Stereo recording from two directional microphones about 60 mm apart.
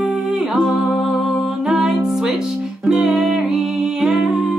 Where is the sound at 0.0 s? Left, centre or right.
Centre.